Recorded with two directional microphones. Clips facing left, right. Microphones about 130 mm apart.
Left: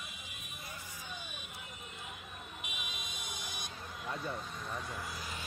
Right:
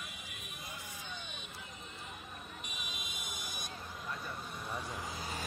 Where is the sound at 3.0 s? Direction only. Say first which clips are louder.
Left 1 dB; 50° right (ahead or behind).